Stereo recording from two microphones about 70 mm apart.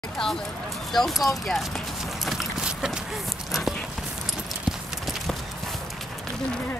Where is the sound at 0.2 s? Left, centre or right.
Centre.